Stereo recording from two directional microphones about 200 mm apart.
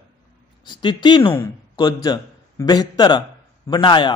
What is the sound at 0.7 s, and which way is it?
A man's voice, 25° left (ahead or behind).